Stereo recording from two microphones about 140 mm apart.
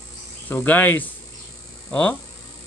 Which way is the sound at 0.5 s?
15° left (ahead or behind).